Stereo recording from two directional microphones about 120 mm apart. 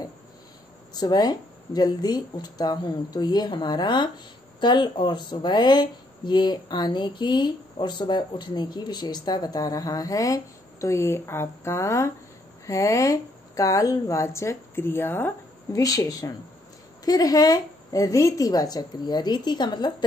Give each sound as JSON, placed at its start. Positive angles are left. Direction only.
{"t": 0.9, "sound": "speech", "side_deg": 35}
{"t": 15.8, "sound": "speech", "side_deg": 30}